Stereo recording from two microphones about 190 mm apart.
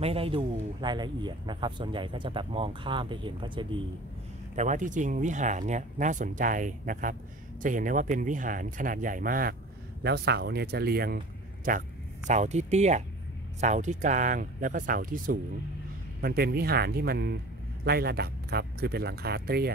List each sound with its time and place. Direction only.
0.0 s speech: 30° right (ahead or behind)
4.6 s speech: 40° right (ahead or behind)
10.0 s speech: 60° right (ahead or behind)